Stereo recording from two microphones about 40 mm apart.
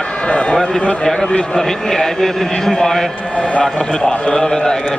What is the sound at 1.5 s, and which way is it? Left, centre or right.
A man's voice, centre.